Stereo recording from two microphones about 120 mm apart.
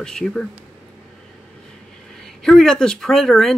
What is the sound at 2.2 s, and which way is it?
Speech, 5° left (ahead or behind).